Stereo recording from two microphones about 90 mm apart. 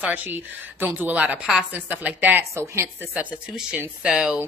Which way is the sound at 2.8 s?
20° right (ahead or behind).